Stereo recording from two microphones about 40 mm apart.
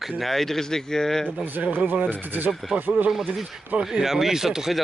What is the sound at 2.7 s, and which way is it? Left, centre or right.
Speech, centre.